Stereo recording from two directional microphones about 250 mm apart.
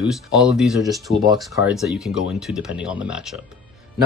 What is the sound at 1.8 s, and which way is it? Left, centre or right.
Speech, centre.